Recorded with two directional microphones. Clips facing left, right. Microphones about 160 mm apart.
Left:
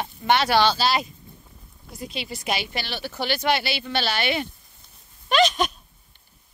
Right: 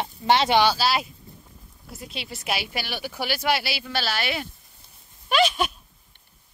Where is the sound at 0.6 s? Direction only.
5° right (ahead or behind).